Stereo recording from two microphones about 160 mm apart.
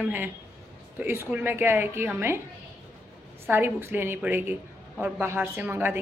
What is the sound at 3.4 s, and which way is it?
Speech, 15° right (ahead or behind).